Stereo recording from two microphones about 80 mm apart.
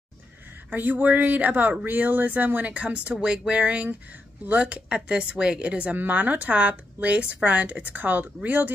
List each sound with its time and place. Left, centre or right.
0.7 s a woman's voice: right